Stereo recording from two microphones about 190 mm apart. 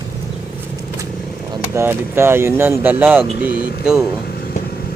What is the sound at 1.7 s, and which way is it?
Speech, 10° right (ahead or behind).